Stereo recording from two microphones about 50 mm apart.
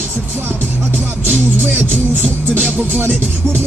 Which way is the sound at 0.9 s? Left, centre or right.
Right.